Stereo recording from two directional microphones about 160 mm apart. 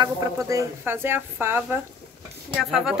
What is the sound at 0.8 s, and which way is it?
Speech, 15° right (ahead or behind).